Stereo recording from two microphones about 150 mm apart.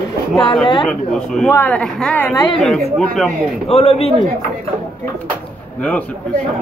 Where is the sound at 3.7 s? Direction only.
40° left (ahead or behind).